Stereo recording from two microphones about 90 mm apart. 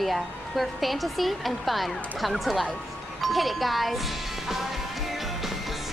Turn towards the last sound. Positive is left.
turn(degrees=0)  # may be behind; listen again after turning